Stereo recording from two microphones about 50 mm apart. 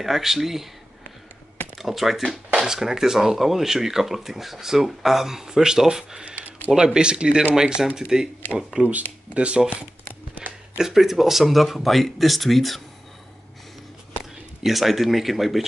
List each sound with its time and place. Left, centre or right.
0.0 s speech: centre
1.8 s speech: centre
8.8 s speech: right
10.8 s speech: centre
14.6 s speech: centre